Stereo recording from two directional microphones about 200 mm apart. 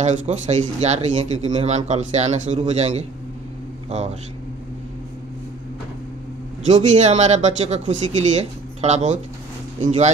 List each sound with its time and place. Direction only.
0.0 s speech: 35° right (ahead or behind)
6.6 s speech: 35° right (ahead or behind)